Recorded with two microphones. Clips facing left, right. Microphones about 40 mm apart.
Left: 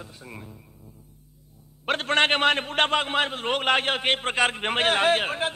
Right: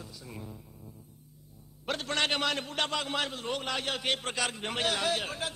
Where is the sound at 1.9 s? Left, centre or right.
Left.